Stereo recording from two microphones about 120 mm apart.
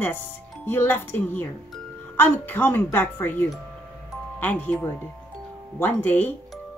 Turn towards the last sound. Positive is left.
turn(degrees=15)  # may be behind; listen again after turning